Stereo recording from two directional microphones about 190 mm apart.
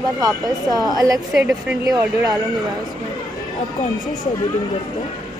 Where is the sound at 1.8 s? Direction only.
20° right (ahead or behind).